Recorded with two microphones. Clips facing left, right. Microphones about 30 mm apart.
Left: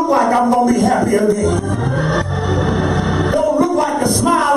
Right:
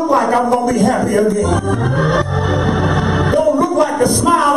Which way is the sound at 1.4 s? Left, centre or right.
Right.